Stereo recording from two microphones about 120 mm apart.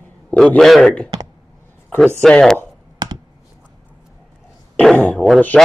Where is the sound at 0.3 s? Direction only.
15° left (ahead or behind).